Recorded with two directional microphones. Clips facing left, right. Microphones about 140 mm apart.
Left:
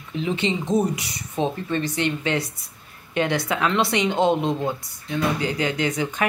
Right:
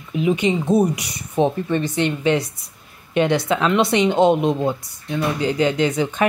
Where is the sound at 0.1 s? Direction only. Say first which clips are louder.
Right 5 dB; 10° right (ahead or behind).